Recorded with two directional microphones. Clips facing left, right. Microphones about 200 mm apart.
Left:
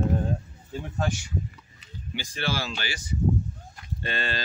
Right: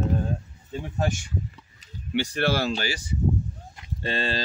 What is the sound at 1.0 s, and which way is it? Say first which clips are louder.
Speech: right 2 dB; 50° right (ahead or behind).